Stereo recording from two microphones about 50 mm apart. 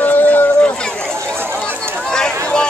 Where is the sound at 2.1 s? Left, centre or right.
Centre.